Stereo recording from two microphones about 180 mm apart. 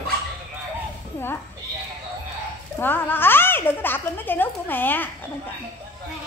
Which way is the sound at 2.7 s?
10° left (ahead or behind).